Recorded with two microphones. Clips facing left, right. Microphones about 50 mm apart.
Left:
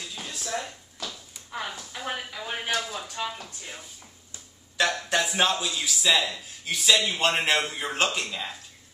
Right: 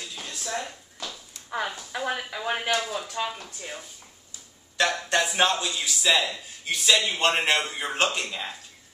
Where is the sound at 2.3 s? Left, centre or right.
Right.